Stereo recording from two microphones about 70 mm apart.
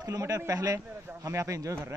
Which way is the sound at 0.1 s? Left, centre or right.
Right.